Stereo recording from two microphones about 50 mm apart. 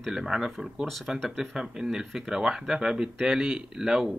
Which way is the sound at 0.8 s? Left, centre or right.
Centre.